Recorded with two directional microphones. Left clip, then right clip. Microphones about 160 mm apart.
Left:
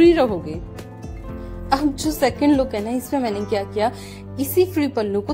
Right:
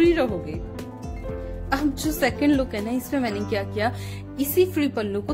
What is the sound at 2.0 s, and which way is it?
A woman's voice, 20° left (ahead or behind).